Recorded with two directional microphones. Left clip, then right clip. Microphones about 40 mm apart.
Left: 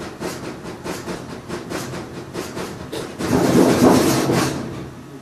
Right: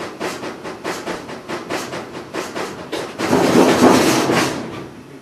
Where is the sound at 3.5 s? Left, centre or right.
Right.